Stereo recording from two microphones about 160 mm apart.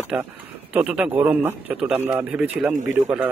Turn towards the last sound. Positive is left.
turn(degrees=-5)  # may be behind; listen again after turning